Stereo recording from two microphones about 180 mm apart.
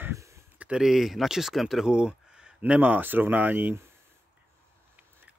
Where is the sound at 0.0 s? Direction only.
15° right (ahead or behind).